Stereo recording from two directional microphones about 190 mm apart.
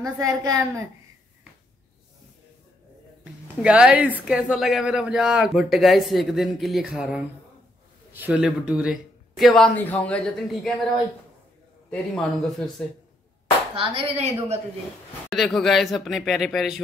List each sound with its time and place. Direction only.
0.0 s a woman's voice: 15° right (ahead or behind)
3.6 s speech: 5° right (ahead or behind)
11.9 s speech: centre (ahead or behind)
13.7 s a woman's voice: 30° right (ahead or behind)
15.2 s speech: centre (ahead or behind)